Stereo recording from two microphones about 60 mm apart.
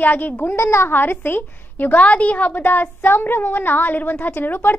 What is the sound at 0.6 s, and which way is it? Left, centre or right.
Speech, left.